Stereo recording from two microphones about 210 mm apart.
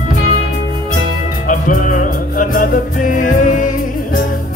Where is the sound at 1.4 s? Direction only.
40° left (ahead or behind).